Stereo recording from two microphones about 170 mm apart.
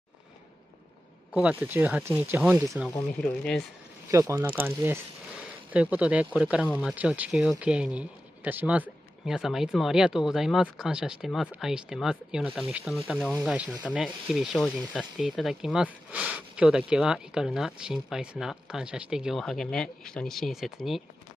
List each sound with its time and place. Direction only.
1.3 s speech: 10° right (ahead or behind)
3.2 s speech: 5° left (ahead or behind)
4.1 s speech: 15° right (ahead or behind); by 21.0 s centre (ahead or behind)